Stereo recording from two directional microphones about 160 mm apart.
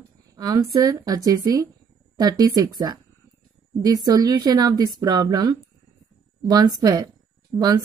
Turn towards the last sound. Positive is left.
turn(degrees=-25)  # may be behind; listen again after turning